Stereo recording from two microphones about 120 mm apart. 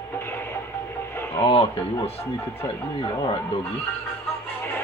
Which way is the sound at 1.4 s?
55° left (ahead or behind).